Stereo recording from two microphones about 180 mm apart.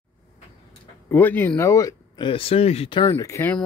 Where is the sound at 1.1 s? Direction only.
10° left (ahead or behind); by 3.1 s 30° left (ahead or behind).